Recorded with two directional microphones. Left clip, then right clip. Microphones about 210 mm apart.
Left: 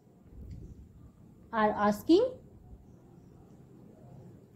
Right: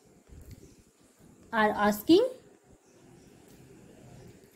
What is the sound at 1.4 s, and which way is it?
Speech, 35° right (ahead or behind).